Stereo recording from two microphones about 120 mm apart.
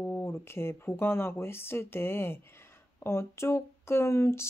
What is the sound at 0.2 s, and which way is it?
Speech, 20° left (ahead or behind).